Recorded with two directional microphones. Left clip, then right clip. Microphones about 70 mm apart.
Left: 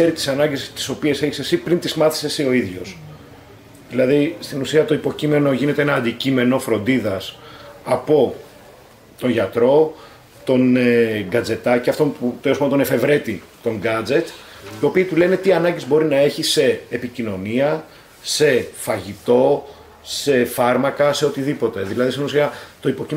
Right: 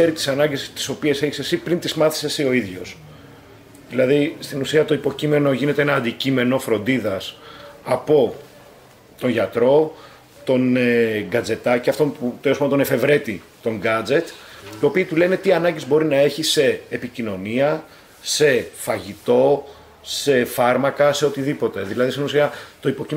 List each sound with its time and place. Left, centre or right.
0.0 s speech: right